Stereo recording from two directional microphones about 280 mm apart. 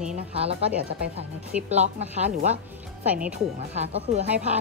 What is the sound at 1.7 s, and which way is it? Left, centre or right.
Speech, right.